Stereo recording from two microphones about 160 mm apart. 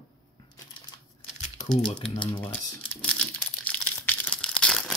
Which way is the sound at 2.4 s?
10° left (ahead or behind).